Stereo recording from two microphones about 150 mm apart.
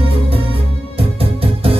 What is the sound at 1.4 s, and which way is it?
Music, 40° right (ahead or behind).